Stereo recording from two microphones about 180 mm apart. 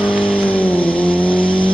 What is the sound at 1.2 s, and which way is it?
Vehicle, 30° left (ahead or behind).